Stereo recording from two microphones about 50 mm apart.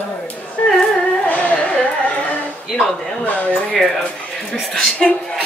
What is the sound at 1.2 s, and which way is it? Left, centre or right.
A woman's voice, left.